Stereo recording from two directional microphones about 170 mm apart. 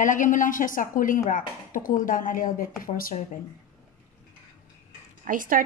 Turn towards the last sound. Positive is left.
turn(degrees=-55)  # may be behind; listen again after turning